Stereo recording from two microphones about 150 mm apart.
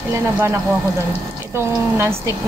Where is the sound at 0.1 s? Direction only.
20° right (ahead or behind).